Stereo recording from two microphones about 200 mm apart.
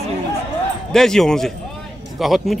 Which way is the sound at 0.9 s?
Centre (ahead or behind).